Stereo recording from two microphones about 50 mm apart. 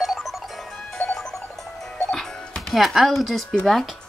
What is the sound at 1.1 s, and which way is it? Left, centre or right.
Music, centre.